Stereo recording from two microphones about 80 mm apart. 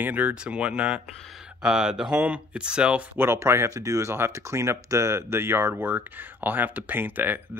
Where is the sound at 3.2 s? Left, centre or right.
Right.